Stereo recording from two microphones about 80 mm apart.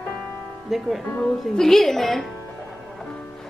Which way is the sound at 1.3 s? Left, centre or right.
Centre.